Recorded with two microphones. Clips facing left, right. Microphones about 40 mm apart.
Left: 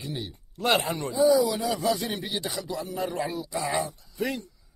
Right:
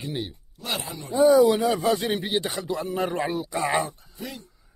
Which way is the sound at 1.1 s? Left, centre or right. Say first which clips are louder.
Right 5 dB; right.